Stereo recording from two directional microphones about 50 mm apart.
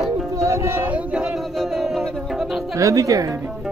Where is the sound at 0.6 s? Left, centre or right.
Right.